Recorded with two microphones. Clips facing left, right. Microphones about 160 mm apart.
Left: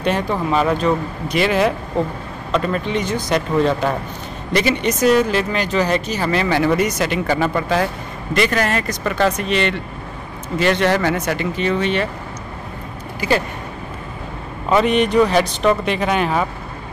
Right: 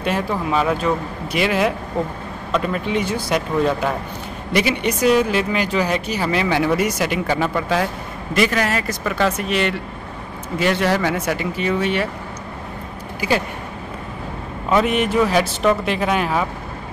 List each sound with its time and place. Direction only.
0.0 s speech: 5° right (ahead or behind)
14.7 s speech: 5° right (ahead or behind)